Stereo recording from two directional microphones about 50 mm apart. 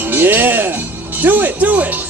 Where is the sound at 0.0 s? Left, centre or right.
Right.